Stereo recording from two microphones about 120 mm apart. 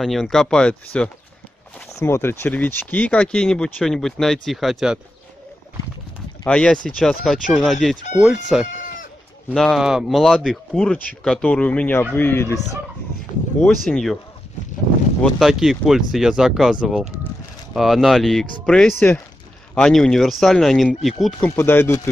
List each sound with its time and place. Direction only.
0.0 s speech: centre (ahead or behind)
2.0 s speech: 20° left (ahead or behind); by 5.0 s 5° right (ahead or behind)
6.4 s speech: 5° left (ahead or behind)
8.6 s chicken: 90° left
9.5 s speech: 5° left (ahead or behind)
13.6 s speech: 5° left (ahead or behind)
15.2 s speech: centre (ahead or behind)
17.7 s speech: centre (ahead or behind)
18.9 s speech: 15° left (ahead or behind)
19.7 s speech: 5° left (ahead or behind)
21.5 s speech: 20° left (ahead or behind)